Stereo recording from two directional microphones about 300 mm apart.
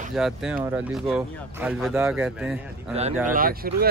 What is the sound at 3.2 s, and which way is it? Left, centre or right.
Speech, right.